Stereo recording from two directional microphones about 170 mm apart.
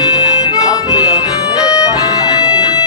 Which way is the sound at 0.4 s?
20° left (ahead or behind).